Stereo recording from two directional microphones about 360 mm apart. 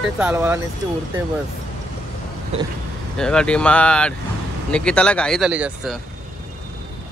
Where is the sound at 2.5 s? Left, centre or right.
Centre.